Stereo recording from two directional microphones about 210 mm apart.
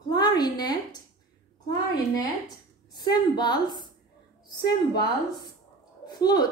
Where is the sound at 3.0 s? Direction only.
20° left (ahead or behind).